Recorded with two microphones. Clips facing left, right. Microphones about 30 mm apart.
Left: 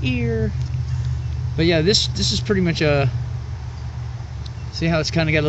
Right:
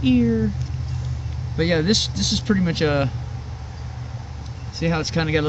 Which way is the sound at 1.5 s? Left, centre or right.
Left.